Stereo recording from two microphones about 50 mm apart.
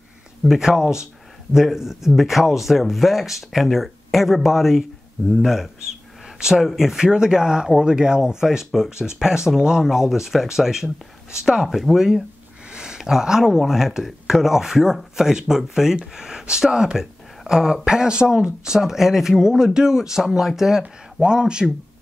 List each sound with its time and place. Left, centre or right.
0.6 s speech: centre